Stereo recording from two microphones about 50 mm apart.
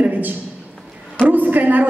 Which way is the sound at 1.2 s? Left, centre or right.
Right.